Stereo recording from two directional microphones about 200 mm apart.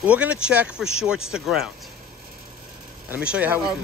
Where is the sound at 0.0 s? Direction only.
5° right (ahead or behind).